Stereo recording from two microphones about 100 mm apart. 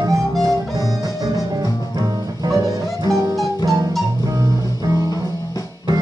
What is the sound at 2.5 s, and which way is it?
Music, 35° right (ahead or behind).